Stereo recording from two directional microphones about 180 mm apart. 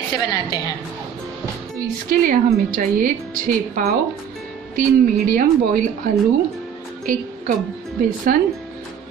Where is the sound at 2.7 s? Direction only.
50° right (ahead or behind).